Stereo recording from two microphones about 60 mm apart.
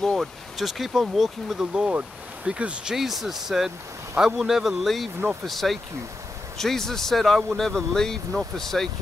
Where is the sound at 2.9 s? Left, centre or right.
Centre.